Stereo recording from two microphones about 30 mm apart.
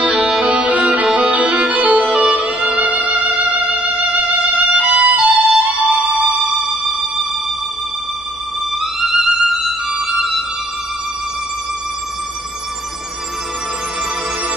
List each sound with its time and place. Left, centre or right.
0.0 s music: right
6.7 s music: centre
8.7 s music: centre